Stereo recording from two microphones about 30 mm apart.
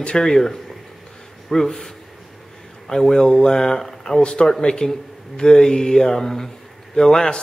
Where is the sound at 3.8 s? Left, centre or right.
Centre.